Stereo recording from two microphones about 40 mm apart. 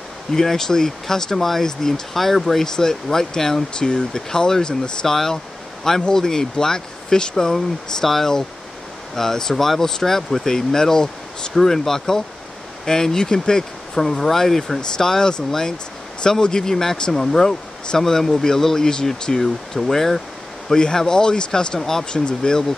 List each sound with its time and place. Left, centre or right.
0.3 s speech: centre
2.6 s speech: centre
19.4 s speech: centre
20.6 s speech: centre